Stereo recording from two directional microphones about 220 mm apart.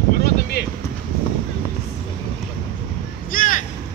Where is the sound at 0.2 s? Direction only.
45° left (ahead or behind).